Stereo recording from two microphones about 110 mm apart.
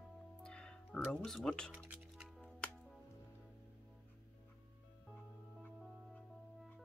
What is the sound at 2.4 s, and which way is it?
Music, 5° left (ahead or behind).